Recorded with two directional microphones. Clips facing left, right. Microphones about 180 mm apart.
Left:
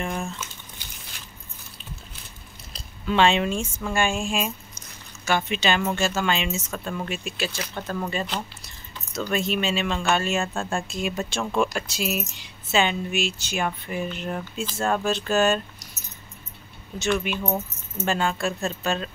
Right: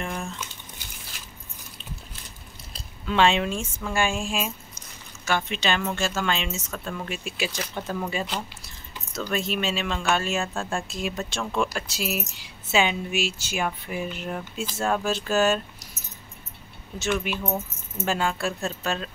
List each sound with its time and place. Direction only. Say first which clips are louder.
0.0 s crumpling: left 2 dB; 5° left (ahead or behind)
2.7 s speech: left 2 dB; centre (ahead or behind)
17.0 s speech: left 2 dB; 5° right (ahead or behind)
17.4 s speech: left 2 dB; 20° left (ahead or behind)
18.0 s speech: left 1 dB; 5° right (ahead or behind)